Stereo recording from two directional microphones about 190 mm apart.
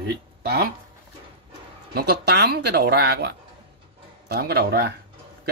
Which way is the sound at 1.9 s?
55° right (ahead or behind).